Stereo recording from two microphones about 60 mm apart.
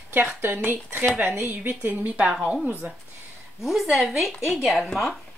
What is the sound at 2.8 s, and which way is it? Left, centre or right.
Speech, right.